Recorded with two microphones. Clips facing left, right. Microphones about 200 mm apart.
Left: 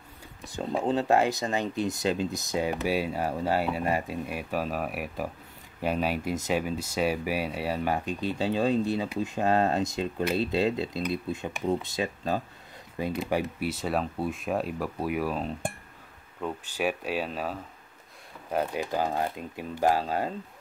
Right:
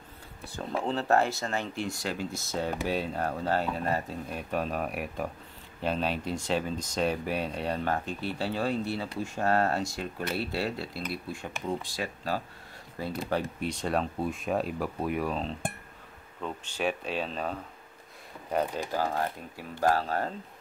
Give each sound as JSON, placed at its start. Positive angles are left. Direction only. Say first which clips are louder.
{"t": 0.4, "sound": "speech", "louder": "left 3 dB", "side_deg": 15}
{"t": 13.6, "sound": "speech", "louder": "left 1 dB", "side_deg": 5}
{"t": 18.9, "sound": "speech", "louder": "left 1 dB", "side_deg": 20}